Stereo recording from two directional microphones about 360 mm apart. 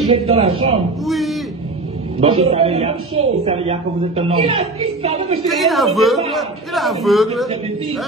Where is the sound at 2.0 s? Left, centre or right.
Centre.